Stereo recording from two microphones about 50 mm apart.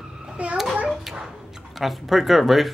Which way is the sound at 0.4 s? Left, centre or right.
Right.